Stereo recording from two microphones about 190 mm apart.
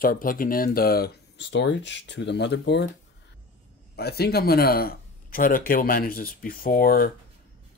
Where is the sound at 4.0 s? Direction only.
55° left (ahead or behind).